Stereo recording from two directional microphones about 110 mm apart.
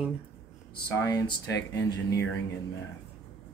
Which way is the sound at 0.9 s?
30° left (ahead or behind).